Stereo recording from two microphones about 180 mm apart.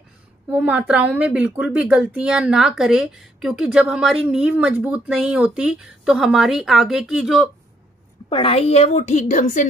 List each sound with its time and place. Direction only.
0.5 s speech: 10° right (ahead or behind)
8.3 s a woman's voice: 30° left (ahead or behind)